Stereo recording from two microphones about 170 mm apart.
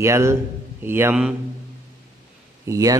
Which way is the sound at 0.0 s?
15° right (ahead or behind).